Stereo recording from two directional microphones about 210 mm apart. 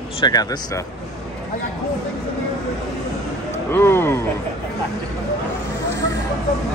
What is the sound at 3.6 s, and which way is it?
Speech, 10° left (ahead or behind).